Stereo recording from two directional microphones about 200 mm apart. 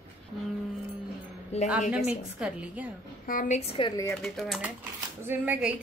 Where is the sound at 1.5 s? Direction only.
30° left (ahead or behind).